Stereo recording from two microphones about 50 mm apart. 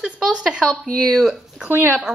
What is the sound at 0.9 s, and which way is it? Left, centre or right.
Speech, centre.